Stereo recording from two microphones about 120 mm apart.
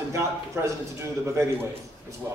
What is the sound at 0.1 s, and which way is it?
A man's voice, 25° right (ahead or behind).